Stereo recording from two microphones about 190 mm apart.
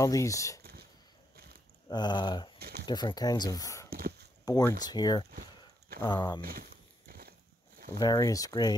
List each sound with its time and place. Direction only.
0.0 s speech: 15° left (ahead or behind)
1.9 s speech: 25° left (ahead or behind)
3.9 s a sound: 50° right (ahead or behind)
4.5 s speech: 20° left (ahead or behind)
7.1 s a sound: 55° right (ahead or behind)
8.0 s speech: 20° left (ahead or behind)